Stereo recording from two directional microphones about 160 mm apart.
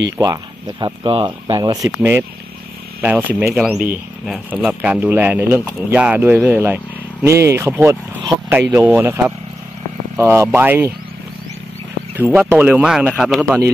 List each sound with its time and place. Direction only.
0.2 s speech: 25° right (ahead or behind)
12.2 s speech: 15° right (ahead or behind)